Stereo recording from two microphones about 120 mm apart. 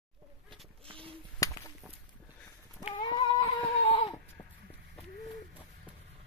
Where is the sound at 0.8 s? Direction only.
50° right (ahead or behind).